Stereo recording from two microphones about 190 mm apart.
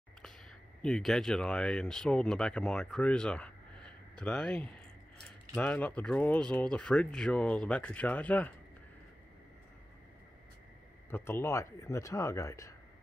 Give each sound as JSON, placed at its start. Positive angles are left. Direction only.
{"t": 0.8, "sound": "speech", "side_deg": 0}
{"t": 11.1, "sound": "speech", "side_deg": 10}